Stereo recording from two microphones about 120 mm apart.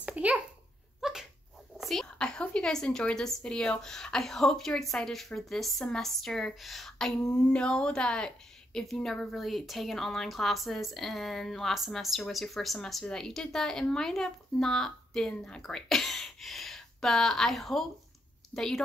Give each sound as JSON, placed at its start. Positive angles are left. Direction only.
{"t": 0.0, "sound": "a sound", "side_deg": -10}
{"t": 1.0, "sound": "dog", "side_deg": -5}
{"t": 1.8, "sound": "a woman's voice", "side_deg": 0}